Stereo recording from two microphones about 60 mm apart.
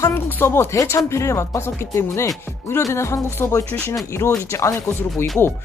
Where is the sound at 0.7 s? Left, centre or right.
Left.